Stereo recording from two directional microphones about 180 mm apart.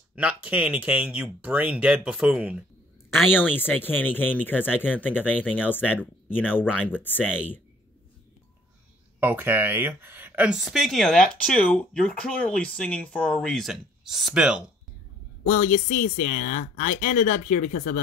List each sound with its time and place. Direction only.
0.1 s speech: 5° right (ahead or behind)
3.3 s speech: 10° left (ahead or behind)
9.2 s speech: 10° right (ahead or behind)
15.4 s speech: 45° left (ahead or behind)